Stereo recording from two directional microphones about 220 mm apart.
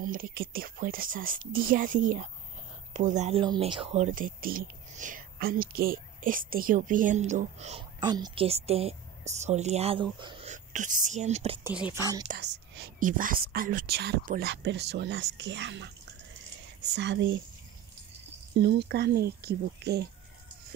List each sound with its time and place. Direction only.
0.0 s speech: 40° right (ahead or behind)
8.0 s a woman's voice: 20° right (ahead or behind)
11.6 s speech: 10° right (ahead or behind)
12.4 s speech: 50° right (ahead or behind)
18.6 s speech: 50° right (ahead or behind)